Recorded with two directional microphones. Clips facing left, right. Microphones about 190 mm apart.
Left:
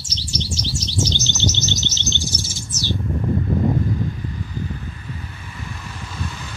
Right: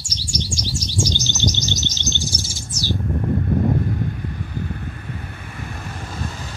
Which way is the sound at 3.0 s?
55° right (ahead or behind).